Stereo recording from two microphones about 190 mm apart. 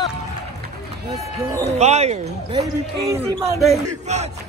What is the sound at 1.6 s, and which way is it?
Speech, 35° right (ahead or behind).